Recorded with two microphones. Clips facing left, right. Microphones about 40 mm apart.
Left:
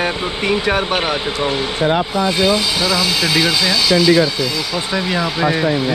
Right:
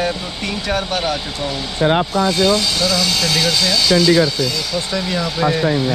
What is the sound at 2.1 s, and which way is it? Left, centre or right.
Speech, centre.